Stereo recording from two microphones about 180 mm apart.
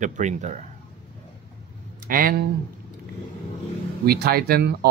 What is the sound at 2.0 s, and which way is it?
Speech, 50° right (ahead or behind).